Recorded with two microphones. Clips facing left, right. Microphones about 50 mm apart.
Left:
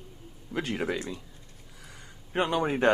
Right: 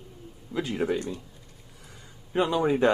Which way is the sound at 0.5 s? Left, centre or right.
Left.